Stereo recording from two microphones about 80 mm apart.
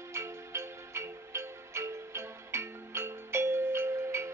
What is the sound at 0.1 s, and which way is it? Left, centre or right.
Music, right.